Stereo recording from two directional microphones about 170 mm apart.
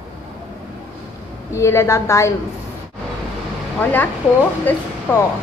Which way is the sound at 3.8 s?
10° left (ahead or behind).